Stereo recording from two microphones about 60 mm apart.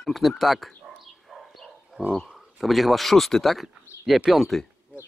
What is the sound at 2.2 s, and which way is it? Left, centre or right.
Speech, centre.